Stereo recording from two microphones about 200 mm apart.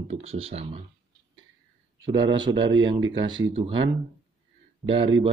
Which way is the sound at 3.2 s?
75° right (ahead or behind).